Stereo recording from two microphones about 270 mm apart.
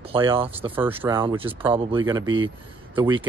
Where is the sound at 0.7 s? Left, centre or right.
Centre.